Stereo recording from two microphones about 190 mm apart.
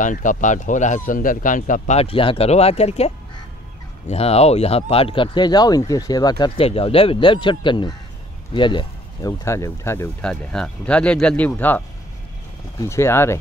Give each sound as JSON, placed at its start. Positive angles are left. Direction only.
{"t": 0.0, "sound": "speech", "side_deg": 45}
{"t": 4.1, "sound": "speech", "side_deg": 35}
{"t": 12.8, "sound": "speech", "side_deg": 15}